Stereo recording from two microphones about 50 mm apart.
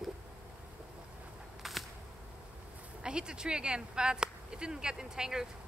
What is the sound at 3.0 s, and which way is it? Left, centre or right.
Speech, centre.